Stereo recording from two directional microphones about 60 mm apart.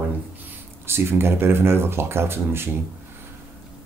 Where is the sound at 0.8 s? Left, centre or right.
Right.